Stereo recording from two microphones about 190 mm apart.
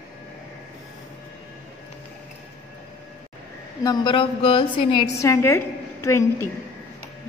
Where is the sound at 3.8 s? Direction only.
20° left (ahead or behind).